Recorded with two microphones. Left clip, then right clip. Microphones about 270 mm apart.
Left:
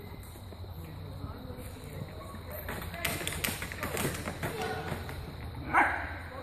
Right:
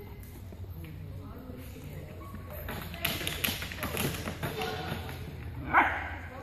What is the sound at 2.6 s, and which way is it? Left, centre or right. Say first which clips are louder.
Tap: right 1 dB; right.